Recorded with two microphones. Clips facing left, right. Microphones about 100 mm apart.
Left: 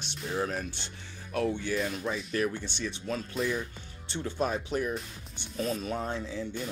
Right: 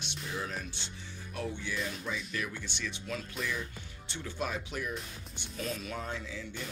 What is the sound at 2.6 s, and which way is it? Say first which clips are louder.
Speech: left 4 dB; 30° left (ahead or behind).